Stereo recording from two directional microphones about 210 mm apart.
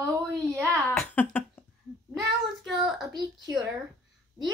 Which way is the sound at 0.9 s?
5° left (ahead or behind).